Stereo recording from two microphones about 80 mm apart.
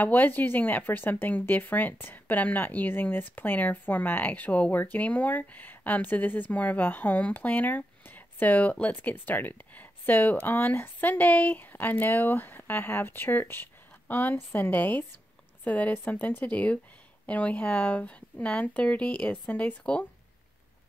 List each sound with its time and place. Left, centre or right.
0.0 s a woman's voice: left